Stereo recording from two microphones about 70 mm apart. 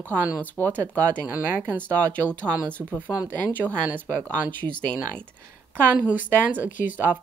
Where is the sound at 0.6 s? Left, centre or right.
Right.